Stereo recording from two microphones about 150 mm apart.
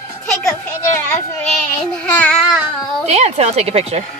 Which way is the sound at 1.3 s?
5° left (ahead or behind).